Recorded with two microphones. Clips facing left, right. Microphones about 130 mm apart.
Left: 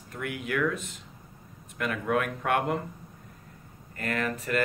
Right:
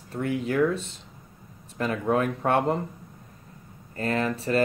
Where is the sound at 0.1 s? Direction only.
30° right (ahead or behind).